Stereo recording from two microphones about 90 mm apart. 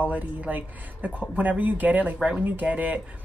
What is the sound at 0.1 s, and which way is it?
A woman's voice, 20° right (ahead or behind).